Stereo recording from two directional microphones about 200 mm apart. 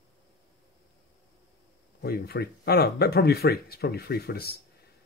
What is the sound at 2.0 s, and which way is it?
Speech, 55° left (ahead or behind).